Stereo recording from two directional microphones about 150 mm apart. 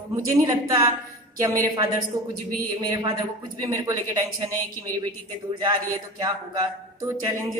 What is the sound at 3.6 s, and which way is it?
Speech, 20° right (ahead or behind).